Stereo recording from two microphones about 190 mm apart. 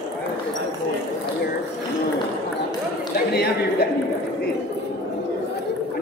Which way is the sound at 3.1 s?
55° left (ahead or behind).